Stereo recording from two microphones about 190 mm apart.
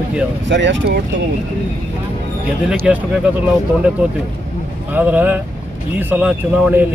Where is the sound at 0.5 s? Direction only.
70° right (ahead or behind).